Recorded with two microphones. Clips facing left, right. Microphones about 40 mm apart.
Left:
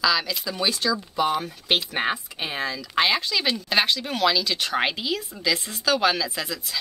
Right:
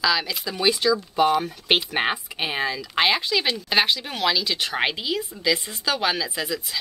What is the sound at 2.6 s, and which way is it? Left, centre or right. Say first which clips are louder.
Speech: even; centre.